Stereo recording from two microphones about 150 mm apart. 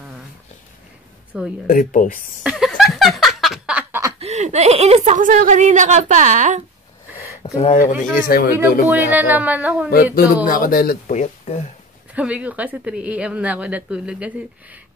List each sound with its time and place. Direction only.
1.3 s a woman's voice: 5° right (ahead or behind)
1.7 s speech: 60° left (ahead or behind)
2.4 s speech: centre (ahead or behind)
2.7 s laughter: centre (ahead or behind)
4.2 s a woman's voice: 50° right (ahead or behind)
7.4 s speech: 50° left (ahead or behind)
8.3 s speech: 90° left
8.8 s speech: 10° right (ahead or behind)
10.1 s speech: 70° left (ahead or behind)
11.1 s speech: 50° left (ahead or behind)
12.1 s speech: 10° right (ahead or behind)